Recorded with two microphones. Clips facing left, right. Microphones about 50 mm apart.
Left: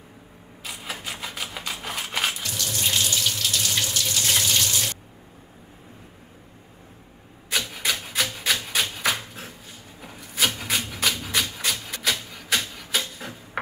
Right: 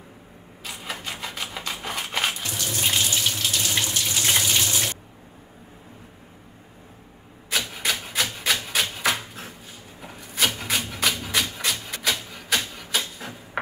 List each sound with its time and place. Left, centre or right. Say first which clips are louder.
0.7 s typewriter: right 1 dB; centre
2.4 s water tap: right 1 dB; right
7.5 s rub: even; centre